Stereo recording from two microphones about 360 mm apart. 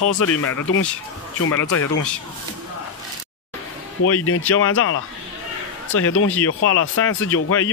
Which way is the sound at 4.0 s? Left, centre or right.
Left.